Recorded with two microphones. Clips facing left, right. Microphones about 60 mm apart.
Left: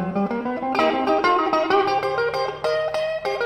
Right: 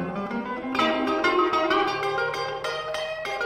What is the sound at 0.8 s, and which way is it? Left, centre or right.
Music, left.